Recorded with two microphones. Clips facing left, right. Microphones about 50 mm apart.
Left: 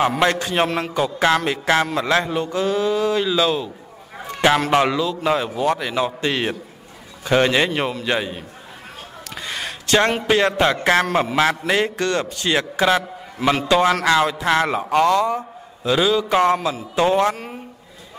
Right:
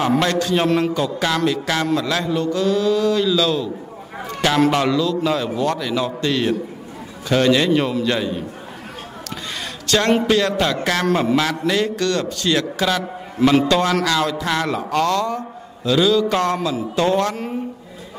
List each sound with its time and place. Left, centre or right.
0.2 s a man's voice: left
0.7 s a man's voice: centre
0.9 s a man's voice: left
9.5 s a sound: left
10.2 s a man's voice: left
13.4 s a man's voice: centre
13.7 s a man's voice: centre